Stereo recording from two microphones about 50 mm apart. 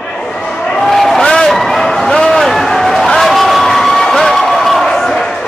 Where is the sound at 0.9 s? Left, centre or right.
Centre.